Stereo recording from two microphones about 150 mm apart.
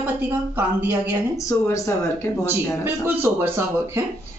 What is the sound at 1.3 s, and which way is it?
Speech, 20° left (ahead or behind).